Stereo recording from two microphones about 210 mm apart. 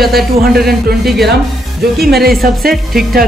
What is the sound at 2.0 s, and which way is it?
Speech, 50° right (ahead or behind).